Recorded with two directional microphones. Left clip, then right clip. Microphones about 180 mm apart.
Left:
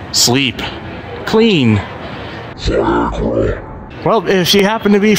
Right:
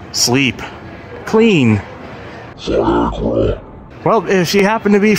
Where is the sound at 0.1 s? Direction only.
15° left (ahead or behind).